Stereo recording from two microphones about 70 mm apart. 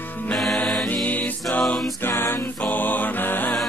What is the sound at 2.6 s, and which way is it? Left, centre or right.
Music, left.